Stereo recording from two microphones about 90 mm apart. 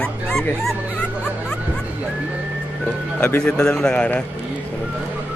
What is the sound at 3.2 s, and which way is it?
Speech, 10° left (ahead or behind).